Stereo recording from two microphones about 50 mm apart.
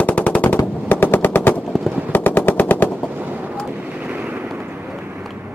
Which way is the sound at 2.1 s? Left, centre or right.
Left.